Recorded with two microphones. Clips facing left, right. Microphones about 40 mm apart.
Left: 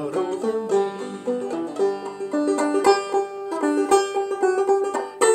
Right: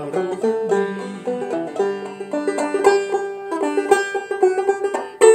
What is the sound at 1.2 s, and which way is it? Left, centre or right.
Banjo, right.